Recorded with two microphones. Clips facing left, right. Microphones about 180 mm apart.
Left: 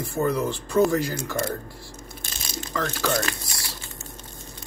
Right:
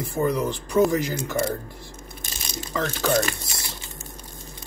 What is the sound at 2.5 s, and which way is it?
Speech, 15° right (ahead or behind).